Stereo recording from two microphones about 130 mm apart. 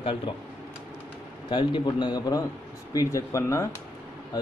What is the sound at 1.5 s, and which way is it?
Speech, 35° left (ahead or behind).